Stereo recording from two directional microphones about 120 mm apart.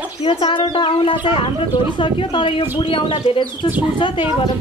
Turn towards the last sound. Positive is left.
turn(degrees=45)  # may be behind; listen again after turning